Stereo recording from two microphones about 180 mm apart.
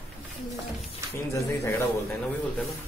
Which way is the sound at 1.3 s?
15° left (ahead or behind).